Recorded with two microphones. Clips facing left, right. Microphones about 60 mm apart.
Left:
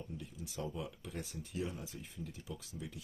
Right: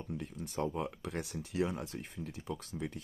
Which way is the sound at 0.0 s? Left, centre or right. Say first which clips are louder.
Right 6 dB; right.